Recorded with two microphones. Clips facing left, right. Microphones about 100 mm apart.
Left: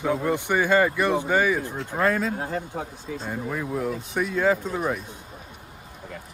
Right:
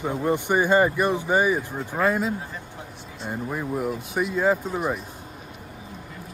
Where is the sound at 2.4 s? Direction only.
70° left (ahead or behind).